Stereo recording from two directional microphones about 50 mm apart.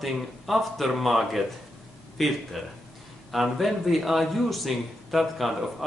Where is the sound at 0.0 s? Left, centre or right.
Centre.